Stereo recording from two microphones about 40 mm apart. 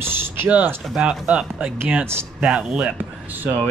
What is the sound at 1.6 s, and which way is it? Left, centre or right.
Speech, right.